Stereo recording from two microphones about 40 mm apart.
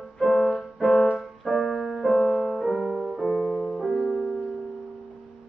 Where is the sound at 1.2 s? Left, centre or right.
Centre.